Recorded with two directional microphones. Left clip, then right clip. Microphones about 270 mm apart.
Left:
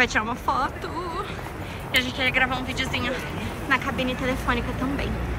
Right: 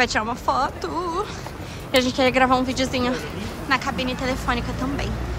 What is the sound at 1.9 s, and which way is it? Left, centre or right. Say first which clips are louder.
A woman's voice: right 4 dB; centre.